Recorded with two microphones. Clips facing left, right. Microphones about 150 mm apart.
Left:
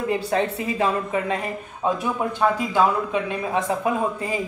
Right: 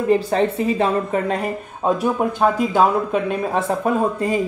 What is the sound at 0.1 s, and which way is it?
Speech, 30° right (ahead or behind).